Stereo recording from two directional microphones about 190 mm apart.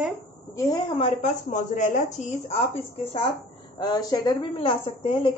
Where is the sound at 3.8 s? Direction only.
20° left (ahead or behind).